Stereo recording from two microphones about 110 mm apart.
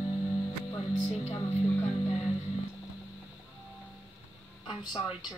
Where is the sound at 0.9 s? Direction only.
90° left.